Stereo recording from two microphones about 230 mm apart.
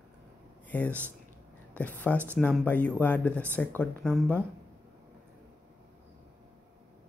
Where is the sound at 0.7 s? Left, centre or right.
Centre.